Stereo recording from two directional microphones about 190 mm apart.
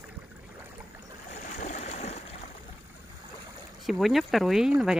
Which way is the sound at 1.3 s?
40° left (ahead or behind).